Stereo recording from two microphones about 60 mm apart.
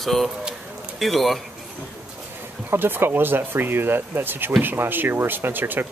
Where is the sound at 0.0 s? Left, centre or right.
Centre.